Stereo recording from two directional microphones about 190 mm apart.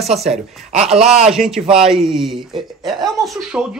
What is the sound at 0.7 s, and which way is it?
Speech, 35° right (ahead or behind).